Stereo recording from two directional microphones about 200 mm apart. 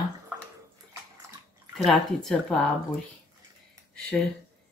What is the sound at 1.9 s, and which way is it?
Speech, 5° left (ahead or behind).